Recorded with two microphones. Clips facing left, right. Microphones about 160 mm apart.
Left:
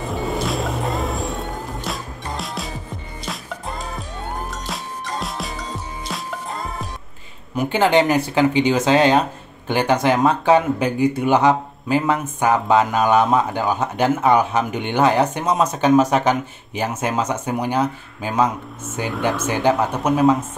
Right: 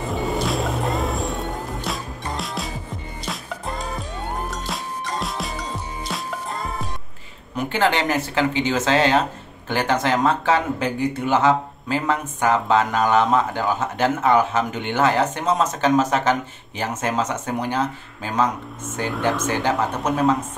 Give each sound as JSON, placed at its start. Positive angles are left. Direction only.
{"t": 0.1, "sound": "music", "side_deg": 0}
{"t": 6.0, "sound": "music", "side_deg": 0}
{"t": 7.5, "sound": "speech", "side_deg": 15}
{"t": 18.9, "sound": "speech", "side_deg": 0}